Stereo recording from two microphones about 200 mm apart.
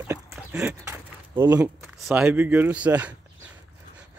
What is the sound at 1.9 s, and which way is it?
Speech, 5° right (ahead or behind).